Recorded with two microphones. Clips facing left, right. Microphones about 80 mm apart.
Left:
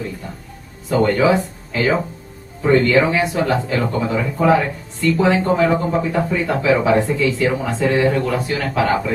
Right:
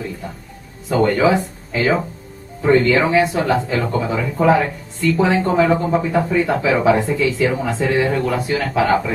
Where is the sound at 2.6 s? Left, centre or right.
Right.